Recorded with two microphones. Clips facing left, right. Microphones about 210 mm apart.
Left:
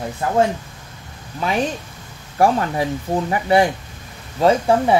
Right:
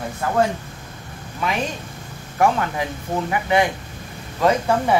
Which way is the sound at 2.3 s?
35° left (ahead or behind).